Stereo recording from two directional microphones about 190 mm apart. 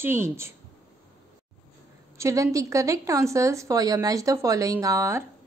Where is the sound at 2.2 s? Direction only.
15° right (ahead or behind).